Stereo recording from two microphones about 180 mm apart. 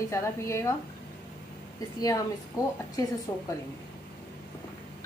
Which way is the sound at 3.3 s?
20° left (ahead or behind).